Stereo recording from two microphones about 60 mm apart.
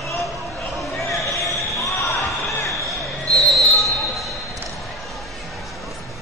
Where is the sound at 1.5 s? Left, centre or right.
Left.